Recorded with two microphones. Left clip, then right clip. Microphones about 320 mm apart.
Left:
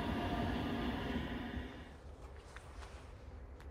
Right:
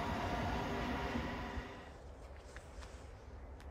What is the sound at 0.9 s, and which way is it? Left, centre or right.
Train, centre.